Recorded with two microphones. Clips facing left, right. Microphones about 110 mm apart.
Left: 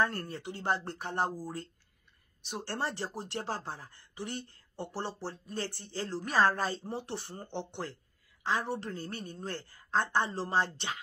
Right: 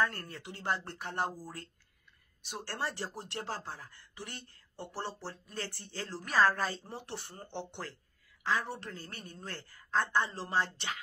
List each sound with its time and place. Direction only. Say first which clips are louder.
0.0 s speech: left 2 dB; 30° left (ahead or behind)
2.4 s speech: left 2 dB; 30° left (ahead or behind)
8.5 s speech: left 2 dB; 25° left (ahead or behind)